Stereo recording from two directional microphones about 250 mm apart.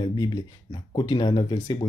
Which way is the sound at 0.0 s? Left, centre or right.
Centre.